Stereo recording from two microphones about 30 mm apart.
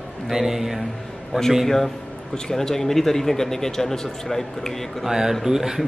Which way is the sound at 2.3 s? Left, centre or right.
Centre.